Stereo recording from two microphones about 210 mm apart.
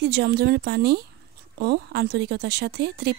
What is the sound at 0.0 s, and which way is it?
A woman's voice, 55° right (ahead or behind).